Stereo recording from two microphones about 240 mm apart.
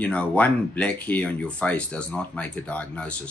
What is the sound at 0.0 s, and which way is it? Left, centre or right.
Speech, centre.